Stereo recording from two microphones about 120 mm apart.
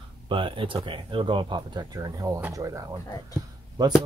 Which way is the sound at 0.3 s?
45° right (ahead or behind).